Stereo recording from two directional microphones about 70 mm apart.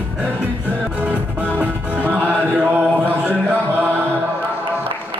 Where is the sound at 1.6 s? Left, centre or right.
Right.